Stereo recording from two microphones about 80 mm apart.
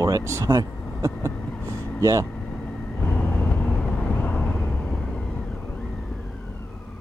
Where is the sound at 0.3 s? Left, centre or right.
Right.